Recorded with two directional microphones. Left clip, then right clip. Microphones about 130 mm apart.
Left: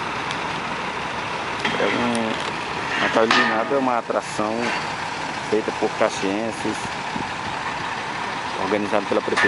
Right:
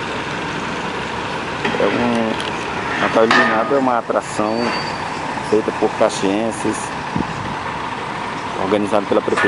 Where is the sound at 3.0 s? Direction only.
10° left (ahead or behind).